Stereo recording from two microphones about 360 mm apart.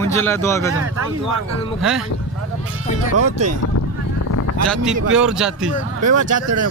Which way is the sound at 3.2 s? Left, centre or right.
Right.